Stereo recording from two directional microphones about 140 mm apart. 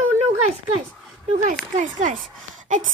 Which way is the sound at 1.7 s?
65° right (ahead or behind).